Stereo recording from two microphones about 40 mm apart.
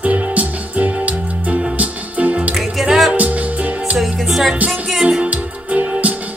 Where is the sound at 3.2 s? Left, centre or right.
Right.